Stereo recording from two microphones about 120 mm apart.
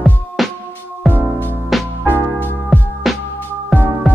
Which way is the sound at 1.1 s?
15° left (ahead or behind).